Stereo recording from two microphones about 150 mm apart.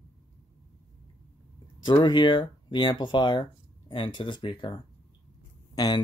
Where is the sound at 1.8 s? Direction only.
30° left (ahead or behind).